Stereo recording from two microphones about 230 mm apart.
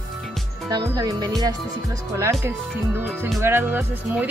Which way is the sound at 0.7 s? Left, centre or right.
Centre.